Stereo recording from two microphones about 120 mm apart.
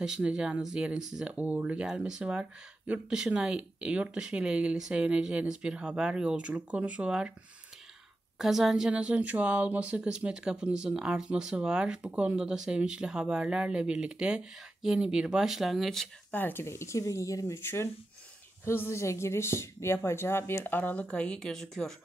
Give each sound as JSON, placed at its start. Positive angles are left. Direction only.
{"t": 0.0, "sound": "speech", "side_deg": -5}
{"t": 8.4, "sound": "speech", "side_deg": 0}
{"t": 16.3, "sound": "a woman's voice", "side_deg": 15}